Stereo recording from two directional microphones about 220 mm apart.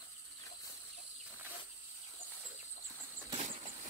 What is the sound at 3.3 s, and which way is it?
Vehicle, 30° right (ahead or behind).